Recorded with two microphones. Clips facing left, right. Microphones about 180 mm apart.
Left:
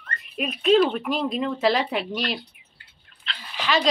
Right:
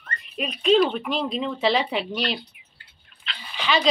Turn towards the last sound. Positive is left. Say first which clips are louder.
# even
turn(degrees=0)  # may be behind; listen again after turning